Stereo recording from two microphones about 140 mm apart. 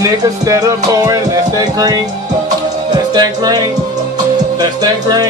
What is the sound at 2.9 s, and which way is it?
Music, 30° right (ahead or behind).